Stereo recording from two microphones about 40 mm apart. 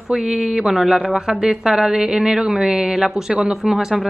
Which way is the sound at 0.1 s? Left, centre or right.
Centre.